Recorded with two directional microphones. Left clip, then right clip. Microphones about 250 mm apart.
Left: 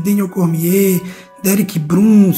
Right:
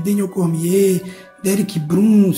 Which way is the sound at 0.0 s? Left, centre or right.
Centre.